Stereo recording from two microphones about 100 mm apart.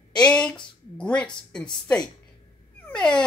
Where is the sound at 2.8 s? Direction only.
10° left (ahead or behind).